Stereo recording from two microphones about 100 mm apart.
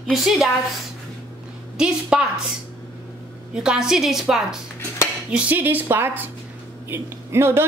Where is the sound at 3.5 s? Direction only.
5° right (ahead or behind).